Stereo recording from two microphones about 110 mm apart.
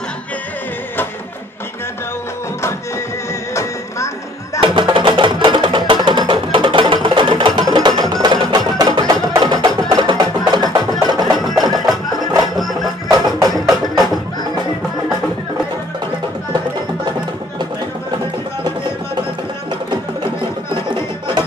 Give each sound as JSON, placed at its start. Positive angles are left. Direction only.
{"t": 4.6, "sound": "music", "side_deg": -45}
{"t": 11.3, "sound": "music", "side_deg": 0}